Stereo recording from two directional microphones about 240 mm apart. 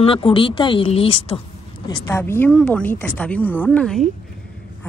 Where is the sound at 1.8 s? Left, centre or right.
Centre.